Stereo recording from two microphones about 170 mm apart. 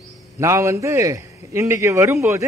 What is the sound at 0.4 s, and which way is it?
A man's voice, 15° right (ahead or behind).